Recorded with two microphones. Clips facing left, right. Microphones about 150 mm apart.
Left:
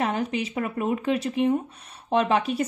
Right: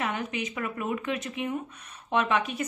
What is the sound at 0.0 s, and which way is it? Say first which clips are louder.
A woman's voice: left 5 dB; 35° left (ahead or behind).